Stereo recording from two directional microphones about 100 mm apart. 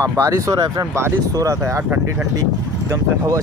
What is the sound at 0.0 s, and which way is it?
Speech, 30° right (ahead or behind).